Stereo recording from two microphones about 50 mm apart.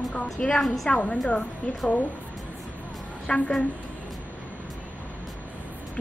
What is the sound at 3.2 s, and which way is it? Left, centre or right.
Speech, centre.